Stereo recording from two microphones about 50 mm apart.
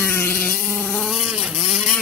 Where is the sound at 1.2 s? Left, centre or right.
Centre.